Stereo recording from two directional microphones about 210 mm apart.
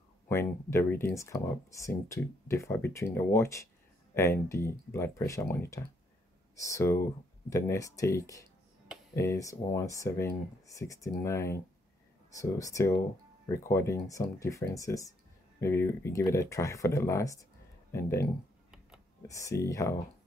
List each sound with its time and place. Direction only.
0.3 s speech: 10° left (ahead or behind)